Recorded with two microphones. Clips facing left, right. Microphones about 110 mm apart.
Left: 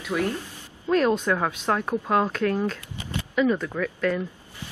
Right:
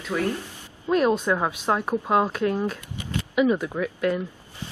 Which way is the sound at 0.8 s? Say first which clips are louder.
Even; 10° right (ahead or behind).